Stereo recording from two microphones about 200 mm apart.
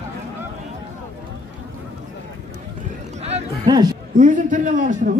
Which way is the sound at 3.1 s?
35° right (ahead or behind).